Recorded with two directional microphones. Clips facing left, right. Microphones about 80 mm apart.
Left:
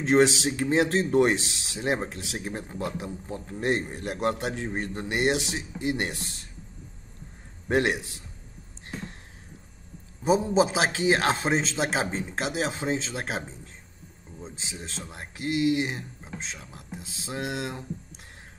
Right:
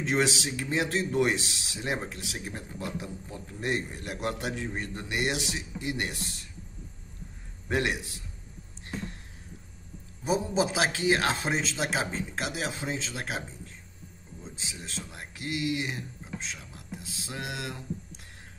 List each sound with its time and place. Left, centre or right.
0.0 s speech: left
7.6 s speech: left
10.2 s speech: left